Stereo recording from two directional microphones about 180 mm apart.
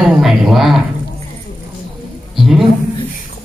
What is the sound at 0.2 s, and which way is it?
Speech, centre (ahead or behind).